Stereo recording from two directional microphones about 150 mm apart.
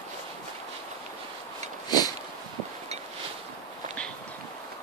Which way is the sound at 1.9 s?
25° left (ahead or behind).